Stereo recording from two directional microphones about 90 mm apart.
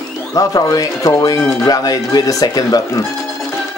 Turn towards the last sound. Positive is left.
turn(degrees=45)  # may be behind; listen again after turning